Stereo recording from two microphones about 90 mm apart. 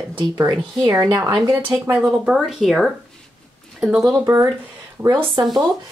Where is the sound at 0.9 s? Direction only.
40° right (ahead or behind).